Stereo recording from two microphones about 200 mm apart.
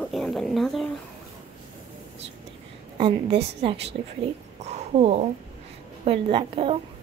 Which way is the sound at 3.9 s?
45° right (ahead or behind).